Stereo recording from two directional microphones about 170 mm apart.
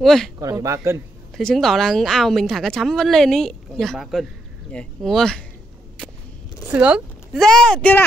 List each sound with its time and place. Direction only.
0.0 s speech: centre (ahead or behind)
0.4 s speech: 20° right (ahead or behind)
1.3 s speech: centre (ahead or behind)
6.7 s speech: 5° right (ahead or behind)